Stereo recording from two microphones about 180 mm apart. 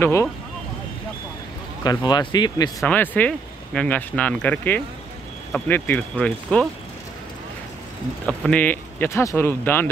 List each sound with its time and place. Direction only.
0.0 s speech: 15° left (ahead or behind)
2.0 s speech: 25° left (ahead or behind)
2.8 s speech: 10° left (ahead or behind)
8.3 s speech: 10° left (ahead or behind)